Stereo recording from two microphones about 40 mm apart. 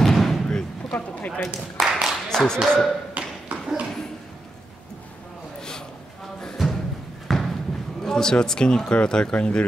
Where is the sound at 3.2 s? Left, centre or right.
Right.